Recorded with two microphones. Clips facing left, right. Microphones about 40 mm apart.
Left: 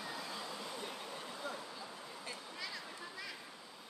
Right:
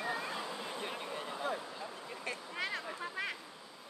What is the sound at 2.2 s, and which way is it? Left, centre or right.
Vehicle, right.